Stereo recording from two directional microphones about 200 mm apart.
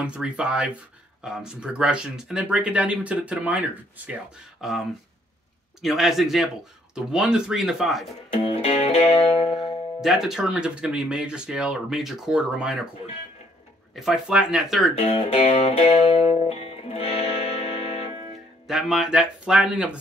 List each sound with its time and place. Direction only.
0.0 s speech: 5° right (ahead or behind)
8.3 s music: 30° left (ahead or behind)
9.5 s speech: centre (ahead or behind)
13.9 s speech: centre (ahead or behind)
15.0 s music: 30° left (ahead or behind)
18.7 s speech: centre (ahead or behind)